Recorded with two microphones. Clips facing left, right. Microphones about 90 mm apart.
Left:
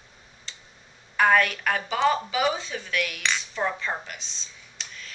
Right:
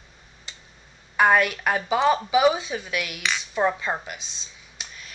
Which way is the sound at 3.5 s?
15° right (ahead or behind).